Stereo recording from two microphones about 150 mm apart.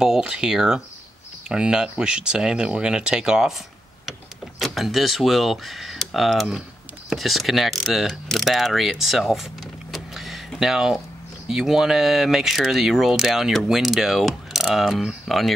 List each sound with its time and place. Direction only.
0.0 s speech: 5° right (ahead or behind)
4.6 s speech: centre (ahead or behind)
7.1 s mechanisms: centre (ahead or behind)
11.4 s speech: 5° right (ahead or behind)